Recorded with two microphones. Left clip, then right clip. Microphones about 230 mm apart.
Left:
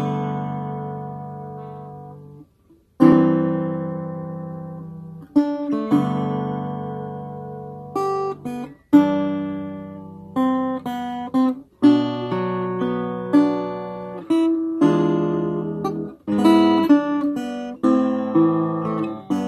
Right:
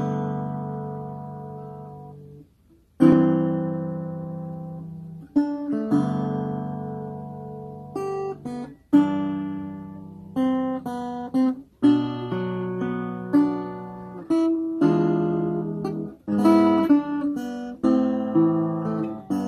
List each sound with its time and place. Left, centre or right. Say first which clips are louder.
0.0 s music: left 3 dB; left
3.1 s music: left 3 dB; left
5.4 s music: left 4 dB; left
8.0 s guitar: left 6 dB; left
8.9 s music: left 4 dB; left
10.5 s guitar: left 3 dB; left
12.0 s music: left 5 dB; left